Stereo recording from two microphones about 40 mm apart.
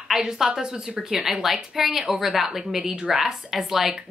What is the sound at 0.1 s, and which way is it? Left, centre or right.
Speech, centre.